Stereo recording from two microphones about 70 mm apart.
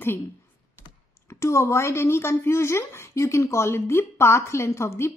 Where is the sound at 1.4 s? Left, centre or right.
Left.